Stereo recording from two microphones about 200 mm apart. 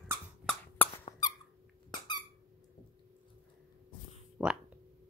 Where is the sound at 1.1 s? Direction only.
20° left (ahead or behind).